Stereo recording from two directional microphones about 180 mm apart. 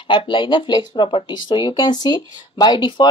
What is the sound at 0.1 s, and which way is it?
Speech, 25° left (ahead or behind).